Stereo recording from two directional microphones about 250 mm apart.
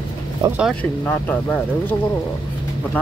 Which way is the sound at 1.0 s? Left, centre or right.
Centre.